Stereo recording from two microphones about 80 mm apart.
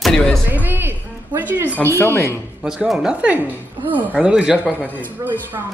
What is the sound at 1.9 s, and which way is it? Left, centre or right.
Speech, left.